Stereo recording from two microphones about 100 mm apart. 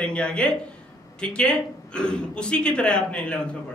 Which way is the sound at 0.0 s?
10° left (ahead or behind).